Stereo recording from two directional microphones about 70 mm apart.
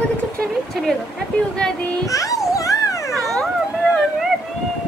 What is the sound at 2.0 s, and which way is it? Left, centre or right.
Children playing, left.